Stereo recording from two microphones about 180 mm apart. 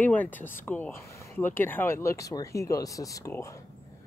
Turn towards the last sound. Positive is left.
turn(degrees=15)  # may be behind; listen again after turning